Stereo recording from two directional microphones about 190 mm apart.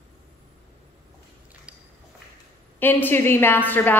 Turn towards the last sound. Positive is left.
turn(degrees=10)  # may be behind; listen again after turning